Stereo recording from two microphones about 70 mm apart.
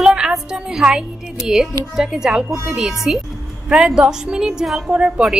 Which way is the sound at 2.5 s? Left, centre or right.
Right.